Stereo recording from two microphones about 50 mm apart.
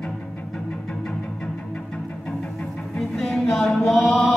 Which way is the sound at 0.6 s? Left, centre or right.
Centre.